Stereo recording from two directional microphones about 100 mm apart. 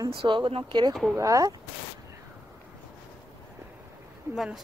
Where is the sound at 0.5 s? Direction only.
70° right (ahead or behind).